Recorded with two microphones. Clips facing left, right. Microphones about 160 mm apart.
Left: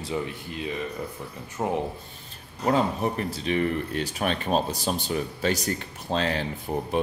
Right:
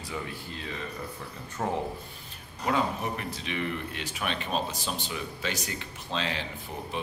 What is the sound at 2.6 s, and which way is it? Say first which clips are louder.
Speech: left 5 dB; 35° left (ahead or behind).